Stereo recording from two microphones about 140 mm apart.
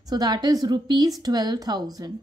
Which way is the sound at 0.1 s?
30° right (ahead or behind).